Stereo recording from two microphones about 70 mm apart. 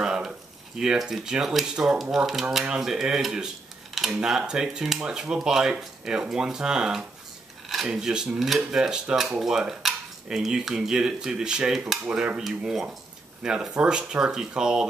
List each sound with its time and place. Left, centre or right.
0.0 s speech: centre
12.4 s speech: centre